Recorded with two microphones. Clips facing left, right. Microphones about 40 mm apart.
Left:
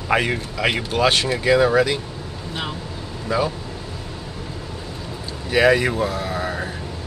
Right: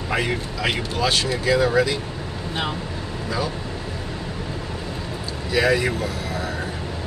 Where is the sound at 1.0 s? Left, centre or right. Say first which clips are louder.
Left 3 dB; left.